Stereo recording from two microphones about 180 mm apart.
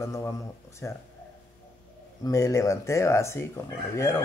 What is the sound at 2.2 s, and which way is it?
Speech, 20° left (ahead or behind).